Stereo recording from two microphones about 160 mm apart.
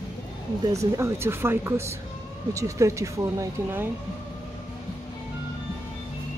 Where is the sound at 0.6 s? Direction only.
20° right (ahead or behind).